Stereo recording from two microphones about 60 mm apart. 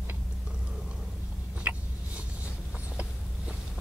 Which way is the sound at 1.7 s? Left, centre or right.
Right.